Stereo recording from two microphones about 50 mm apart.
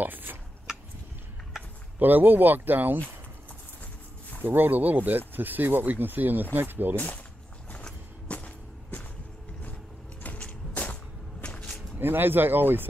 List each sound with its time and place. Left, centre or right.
0.0 s speech: right
0.7 s a sound: centre
2.0 s speech: right
4.4 s speech: right
8.3 s music: left
10.2 s a sound: left
12.0 s speech: right